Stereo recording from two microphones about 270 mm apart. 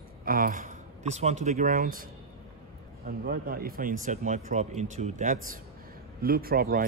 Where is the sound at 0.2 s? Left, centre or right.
Right.